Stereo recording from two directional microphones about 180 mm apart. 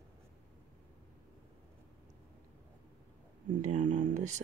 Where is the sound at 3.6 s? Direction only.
45° right (ahead or behind).